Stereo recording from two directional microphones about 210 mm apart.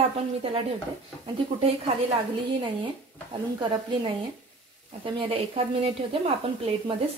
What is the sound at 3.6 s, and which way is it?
A woman's voice, 25° right (ahead or behind).